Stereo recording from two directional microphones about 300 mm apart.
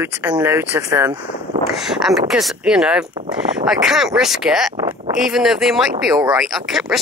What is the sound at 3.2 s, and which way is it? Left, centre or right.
Speech, centre.